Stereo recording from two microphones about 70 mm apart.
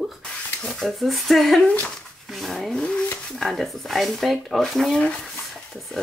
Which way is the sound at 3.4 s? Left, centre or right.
Centre.